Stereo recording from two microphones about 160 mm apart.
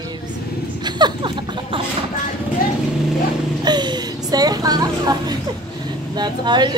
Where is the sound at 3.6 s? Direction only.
25° right (ahead or behind).